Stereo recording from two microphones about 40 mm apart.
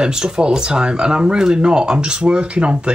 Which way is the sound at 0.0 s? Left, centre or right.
Centre.